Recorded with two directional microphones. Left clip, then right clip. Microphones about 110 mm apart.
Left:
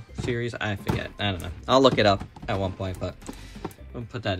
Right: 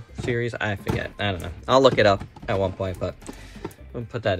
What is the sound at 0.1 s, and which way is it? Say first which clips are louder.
Speech: right 3 dB; 40° left (ahead or behind).